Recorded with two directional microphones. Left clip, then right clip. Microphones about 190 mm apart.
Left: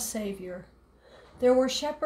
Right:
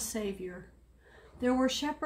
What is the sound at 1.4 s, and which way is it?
Speech, 50° left (ahead or behind).